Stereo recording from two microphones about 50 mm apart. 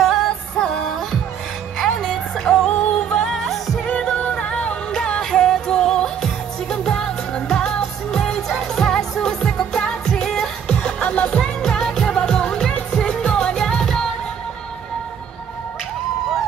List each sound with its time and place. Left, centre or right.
0.0 s music: centre
3.8 s music: centre
11.1 s music: left
11.6 s music: centre